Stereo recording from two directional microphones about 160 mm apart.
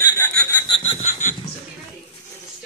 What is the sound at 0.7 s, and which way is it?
Snicker, 35° left (ahead or behind).